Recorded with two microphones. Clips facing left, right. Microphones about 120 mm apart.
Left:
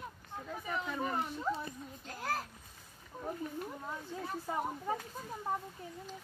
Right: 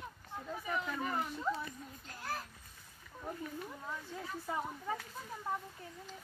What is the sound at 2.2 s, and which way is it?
Speech, 90° left.